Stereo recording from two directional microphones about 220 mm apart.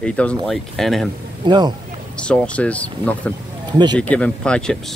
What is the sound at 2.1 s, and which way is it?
Speech, 5° left (ahead or behind).